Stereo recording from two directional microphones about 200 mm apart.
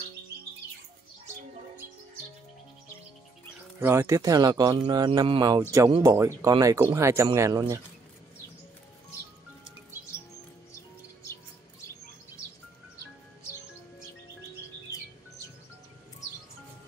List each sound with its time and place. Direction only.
3.8 s speech: 15° right (ahead or behind)